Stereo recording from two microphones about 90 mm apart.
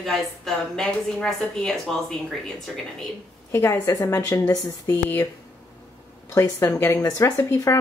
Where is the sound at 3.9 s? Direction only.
35° left (ahead or behind).